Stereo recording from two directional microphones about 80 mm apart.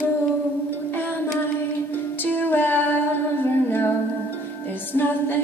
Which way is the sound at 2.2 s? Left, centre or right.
Left.